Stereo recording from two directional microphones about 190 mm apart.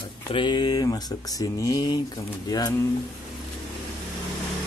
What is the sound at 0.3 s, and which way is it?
Speech, 25° left (ahead or behind).